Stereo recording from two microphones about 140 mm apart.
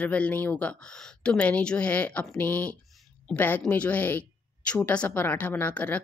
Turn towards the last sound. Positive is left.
turn(degrees=10)  # may be behind; listen again after turning